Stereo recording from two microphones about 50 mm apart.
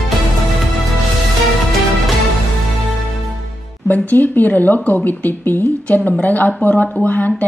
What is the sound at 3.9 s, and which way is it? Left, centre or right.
Speech, left.